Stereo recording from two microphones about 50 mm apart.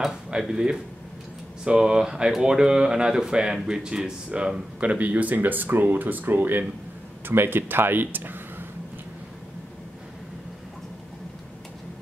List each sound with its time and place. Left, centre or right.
0.3 s speech: centre; by 8.6 s right